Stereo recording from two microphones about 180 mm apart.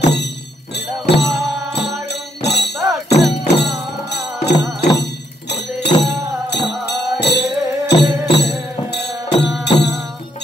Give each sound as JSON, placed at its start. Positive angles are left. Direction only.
{"t": 0.0, "sound": "music", "side_deg": 70}